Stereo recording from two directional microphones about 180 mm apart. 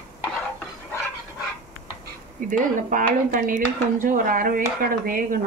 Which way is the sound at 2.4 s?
45° right (ahead or behind).